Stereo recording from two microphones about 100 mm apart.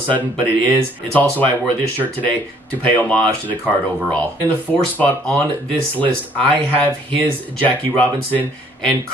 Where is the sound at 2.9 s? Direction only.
15° left (ahead or behind).